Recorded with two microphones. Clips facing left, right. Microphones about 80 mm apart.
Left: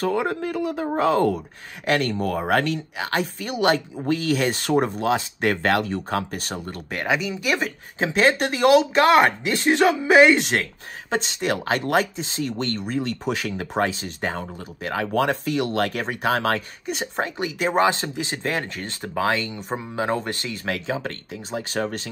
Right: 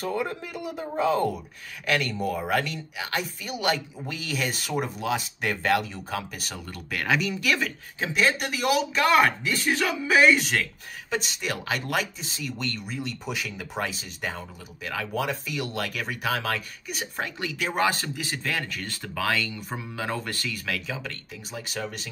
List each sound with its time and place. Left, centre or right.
0.1 s speech: left
0.5 s speech: left
7.1 s speech: centre
7.5 s speech: left